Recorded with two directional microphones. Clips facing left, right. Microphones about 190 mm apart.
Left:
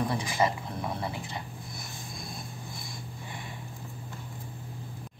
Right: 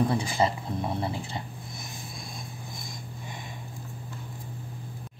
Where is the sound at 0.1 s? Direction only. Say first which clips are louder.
Right 2 dB; 30° right (ahead or behind).